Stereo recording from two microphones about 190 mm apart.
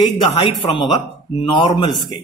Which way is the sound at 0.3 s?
25° left (ahead or behind).